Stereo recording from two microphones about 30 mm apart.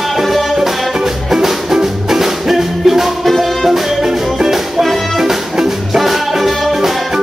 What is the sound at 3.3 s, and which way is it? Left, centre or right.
Music, centre.